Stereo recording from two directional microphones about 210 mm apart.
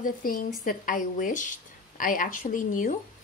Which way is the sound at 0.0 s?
40° left (ahead or behind).